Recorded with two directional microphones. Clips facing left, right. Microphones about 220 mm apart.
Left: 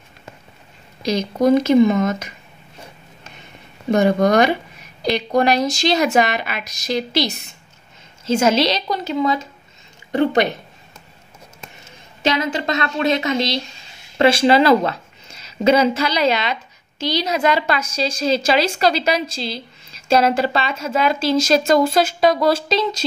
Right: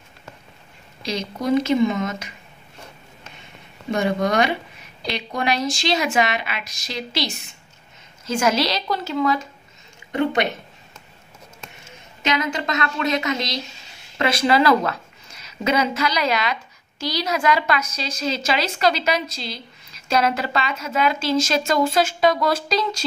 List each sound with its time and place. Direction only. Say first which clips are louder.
1.0 s a woman's voice: left 8 dB; 45° left (ahead or behind)
3.9 s a woman's voice: left 6 dB; 40° left (ahead or behind)
8.3 s a woman's voice: left 4 dB; 25° left (ahead or behind)
10.1 s a woman's voice: left 4 dB; 35° left (ahead or behind)
12.2 s a woman's voice: left 3 dB; 30° left (ahead or behind)